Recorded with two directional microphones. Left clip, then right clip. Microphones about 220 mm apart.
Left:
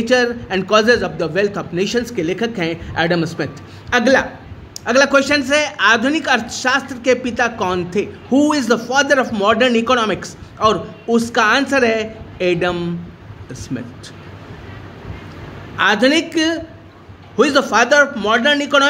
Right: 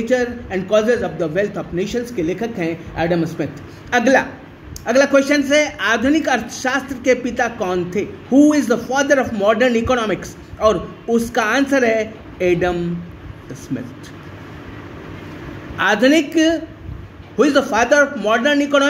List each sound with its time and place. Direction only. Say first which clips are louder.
0.1 s a man's voice: left 4 dB; 25° left (ahead or behind)
3.9 s a man's voice: left 1 dB; 10° left (ahead or behind)
15.8 s a man's voice: even; 10° left (ahead or behind)